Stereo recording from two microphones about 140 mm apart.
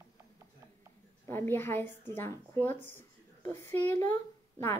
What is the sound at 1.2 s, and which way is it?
A woman's voice, 15° left (ahead or behind).